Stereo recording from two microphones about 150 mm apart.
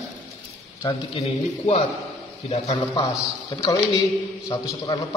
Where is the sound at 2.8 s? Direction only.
25° left (ahead or behind).